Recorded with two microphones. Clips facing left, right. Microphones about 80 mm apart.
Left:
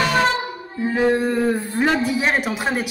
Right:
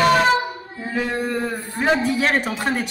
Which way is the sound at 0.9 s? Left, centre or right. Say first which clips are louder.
Left 5 dB; left.